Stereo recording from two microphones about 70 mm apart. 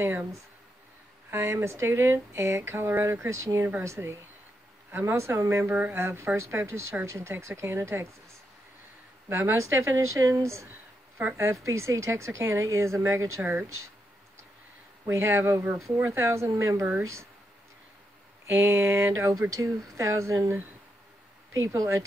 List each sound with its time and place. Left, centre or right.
0.0 s speech: right
5.7 s speech: right
5.9 s speech: right
9.3 s speech: right
11.1 s a woman's voice: right
11.4 s speech: right
13.4 s speech: right
15.0 s speech: right
18.5 s speech: right
21.5 s speech: right